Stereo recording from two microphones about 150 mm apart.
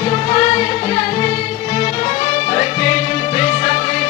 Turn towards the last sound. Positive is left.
turn(degrees=45)  # may be behind; listen again after turning